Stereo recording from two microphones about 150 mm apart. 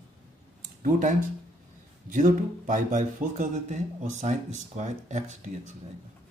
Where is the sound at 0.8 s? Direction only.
65° right (ahead or behind).